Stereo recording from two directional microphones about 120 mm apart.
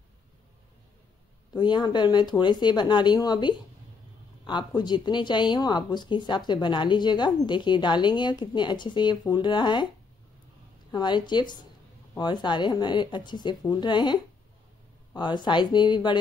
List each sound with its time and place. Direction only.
1.5 s a woman's voice: 35° left (ahead or behind)
10.9 s a woman's voice: 35° left (ahead or behind)